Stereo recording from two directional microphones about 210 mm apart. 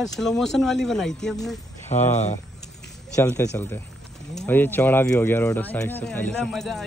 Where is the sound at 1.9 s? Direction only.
35° left (ahead or behind).